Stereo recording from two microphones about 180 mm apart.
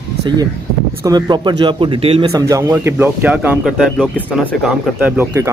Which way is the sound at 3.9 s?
5° left (ahead or behind).